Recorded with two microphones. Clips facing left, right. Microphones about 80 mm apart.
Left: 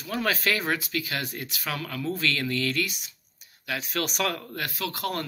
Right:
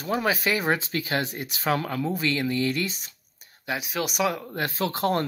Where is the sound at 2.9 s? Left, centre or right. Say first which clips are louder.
Right 1 dB; right.